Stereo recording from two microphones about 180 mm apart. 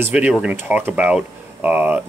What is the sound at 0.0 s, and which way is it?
Speech, 5° right (ahead or behind).